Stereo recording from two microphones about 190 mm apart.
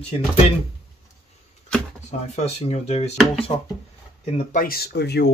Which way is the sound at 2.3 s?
35° left (ahead or behind).